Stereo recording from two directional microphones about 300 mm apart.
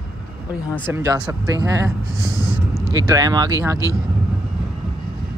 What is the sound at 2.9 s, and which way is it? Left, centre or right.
Speech, centre.